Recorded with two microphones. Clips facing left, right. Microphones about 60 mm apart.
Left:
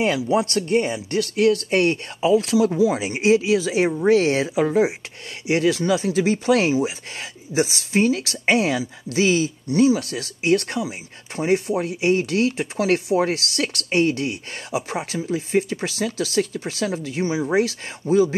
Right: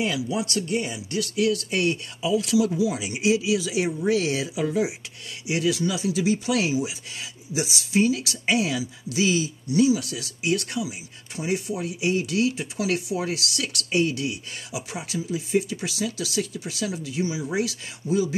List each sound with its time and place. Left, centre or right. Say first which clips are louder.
0.0 s speech: left 6 dB; left